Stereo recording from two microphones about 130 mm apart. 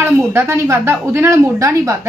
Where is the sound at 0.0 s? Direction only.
20° right (ahead or behind).